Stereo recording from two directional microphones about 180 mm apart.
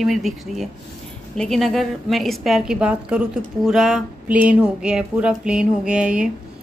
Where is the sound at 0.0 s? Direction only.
Centre (ahead or behind).